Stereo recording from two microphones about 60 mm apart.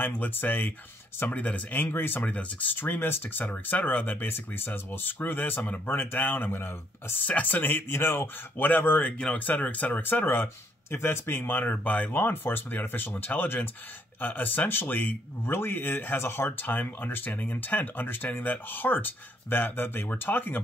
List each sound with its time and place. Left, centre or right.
0.0 s speech: left